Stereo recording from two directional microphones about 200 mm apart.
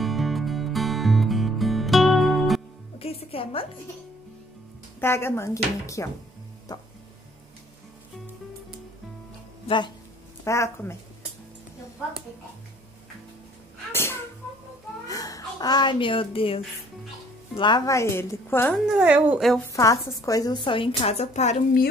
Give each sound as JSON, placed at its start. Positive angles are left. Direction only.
{"t": 0.0, "sound": "music", "side_deg": 0}
{"t": 3.0, "sound": "a woman's voice", "side_deg": 30}
{"t": 5.0, "sound": "a woman's voice", "side_deg": 10}
{"t": 10.4, "sound": "a woman's voice", "side_deg": 15}
{"t": 15.0, "sound": "a woman's voice", "side_deg": 20}
{"t": 18.9, "sound": "a woman's voice", "side_deg": -5}
{"t": 19.6, "sound": "a woman's voice", "side_deg": 15}